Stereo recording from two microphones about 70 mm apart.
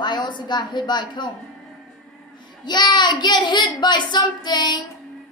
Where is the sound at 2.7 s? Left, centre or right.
Left.